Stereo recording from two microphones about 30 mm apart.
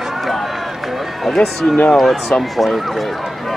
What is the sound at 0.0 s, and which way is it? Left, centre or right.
Run, centre.